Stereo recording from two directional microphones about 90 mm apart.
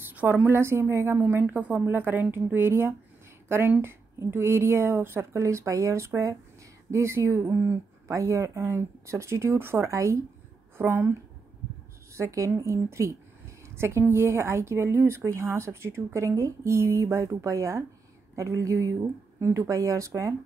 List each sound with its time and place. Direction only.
0.0 s a woman's voice: 20° right (ahead or behind)